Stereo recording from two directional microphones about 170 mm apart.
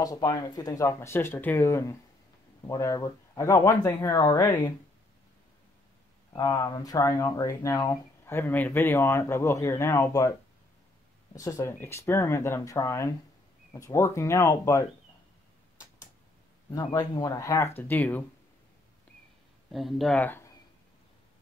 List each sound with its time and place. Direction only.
0.0 s speech: 20° left (ahead or behind)
6.3 s speech: 20° left (ahead or behind)
11.3 s speech: 20° left (ahead or behind)
16.7 s speech: 20° left (ahead or behind)
19.7 s speech: centre (ahead or behind)